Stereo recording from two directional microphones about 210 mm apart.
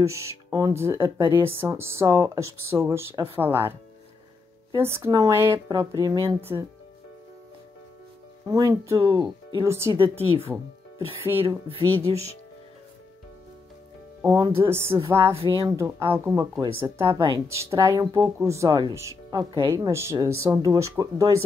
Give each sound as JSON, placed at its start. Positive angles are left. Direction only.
{"t": 0.5, "sound": "speech", "side_deg": -15}
{"t": 4.7, "sound": "speech", "side_deg": -10}
{"t": 8.5, "sound": "speech", "side_deg": -15}
{"t": 9.9, "sound": "speech", "side_deg": -25}
{"t": 14.2, "sound": "speech", "side_deg": -15}